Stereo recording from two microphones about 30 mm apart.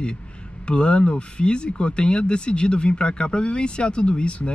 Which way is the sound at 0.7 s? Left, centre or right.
Left.